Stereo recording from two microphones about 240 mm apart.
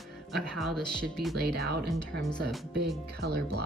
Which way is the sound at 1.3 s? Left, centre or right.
Right.